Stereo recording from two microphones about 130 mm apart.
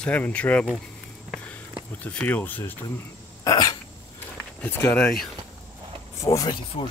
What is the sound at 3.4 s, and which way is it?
Cough, 30° left (ahead or behind).